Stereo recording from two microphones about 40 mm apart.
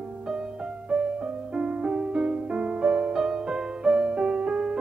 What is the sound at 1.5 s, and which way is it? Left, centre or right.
Music, centre.